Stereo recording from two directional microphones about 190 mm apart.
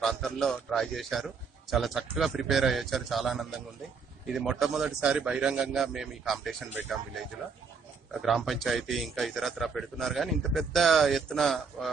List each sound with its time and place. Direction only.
0.0 s a man's voice: centre (ahead or behind)
8.1 s a man's voice: centre (ahead or behind)